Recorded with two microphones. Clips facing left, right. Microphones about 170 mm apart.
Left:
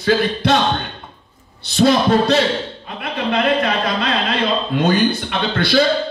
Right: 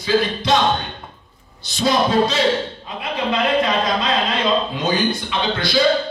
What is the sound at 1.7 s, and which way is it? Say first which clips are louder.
A man's voice: left 3 dB; 60° left (ahead or behind).